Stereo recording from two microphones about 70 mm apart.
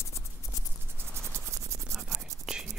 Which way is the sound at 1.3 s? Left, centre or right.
Right.